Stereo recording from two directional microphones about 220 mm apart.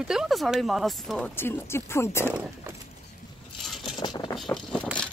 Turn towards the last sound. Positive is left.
turn(degrees=5)  # may be behind; listen again after turning